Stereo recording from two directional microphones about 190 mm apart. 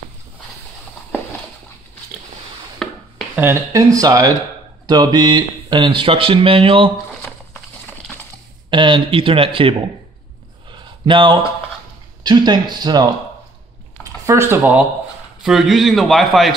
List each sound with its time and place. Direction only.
2.8 s a sound: 5° left (ahead or behind)
3.3 s speech: 10° right (ahead or behind); by 6.9 s 30° right (ahead or behind)
8.6 s speech: 25° right (ahead or behind)
10.7 s a sound: 25° right (ahead or behind)
12.2 s speech: 20° right (ahead or behind)
14.0 s speech: 15° right (ahead or behind)
15.4 s a man's voice: centre (ahead or behind)